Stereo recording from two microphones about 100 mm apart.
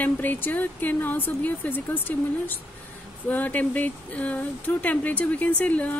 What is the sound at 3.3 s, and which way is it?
A woman's voice, 15° left (ahead or behind).